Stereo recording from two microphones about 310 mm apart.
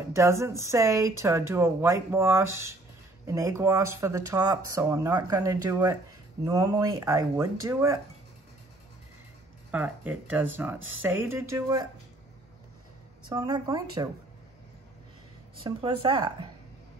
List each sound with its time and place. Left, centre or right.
0.1 s speech: centre
9.7 s speech: centre
13.3 s speech: centre
15.6 s speech: centre